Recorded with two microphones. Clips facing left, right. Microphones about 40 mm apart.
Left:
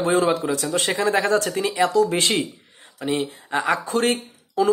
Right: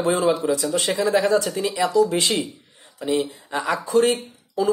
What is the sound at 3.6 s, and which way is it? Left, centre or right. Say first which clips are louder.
Speech: right 3 dB; left.